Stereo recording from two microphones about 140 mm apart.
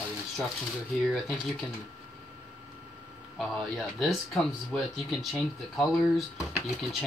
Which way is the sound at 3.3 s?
Centre (ahead or behind).